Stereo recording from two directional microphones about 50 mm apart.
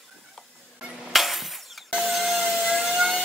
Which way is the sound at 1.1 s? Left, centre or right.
Centre.